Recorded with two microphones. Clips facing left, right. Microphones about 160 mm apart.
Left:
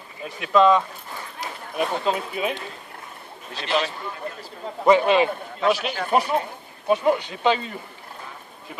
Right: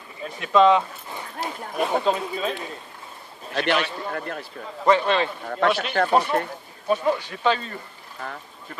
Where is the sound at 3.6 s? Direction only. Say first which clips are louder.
Right 2 dB; 60° right (ahead or behind).